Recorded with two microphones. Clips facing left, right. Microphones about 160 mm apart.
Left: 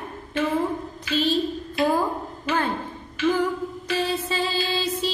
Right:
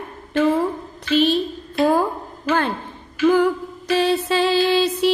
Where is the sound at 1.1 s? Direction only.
65° right (ahead or behind).